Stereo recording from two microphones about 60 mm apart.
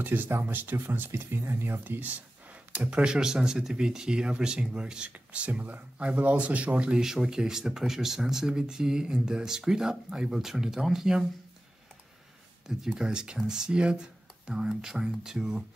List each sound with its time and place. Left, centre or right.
0.0 s speech: right; by 11.2 s centre
12.6 s speech: centre